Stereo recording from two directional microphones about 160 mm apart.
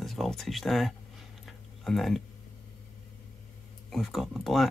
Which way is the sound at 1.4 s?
Centre (ahead or behind).